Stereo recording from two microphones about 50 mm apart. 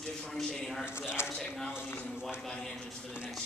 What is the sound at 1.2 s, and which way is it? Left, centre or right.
Speech, left.